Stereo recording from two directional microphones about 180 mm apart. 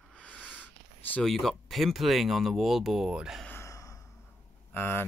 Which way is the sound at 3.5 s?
15° left (ahead or behind).